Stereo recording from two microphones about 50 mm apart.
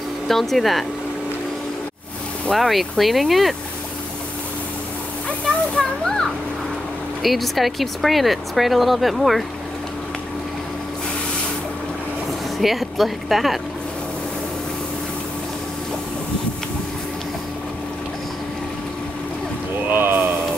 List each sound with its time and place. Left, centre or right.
0.3 s speech: centre
2.5 s speech: centre
5.8 s children playing: centre
7.2 s speech: centre
12.5 s speech: centre
19.9 s a sound: right